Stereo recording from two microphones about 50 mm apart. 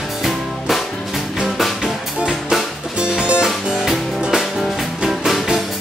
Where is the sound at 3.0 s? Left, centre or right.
Centre.